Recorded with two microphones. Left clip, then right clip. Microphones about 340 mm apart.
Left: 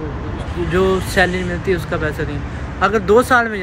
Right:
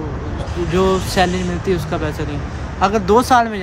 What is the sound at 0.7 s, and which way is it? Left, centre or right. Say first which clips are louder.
Speech: left 1 dB; centre.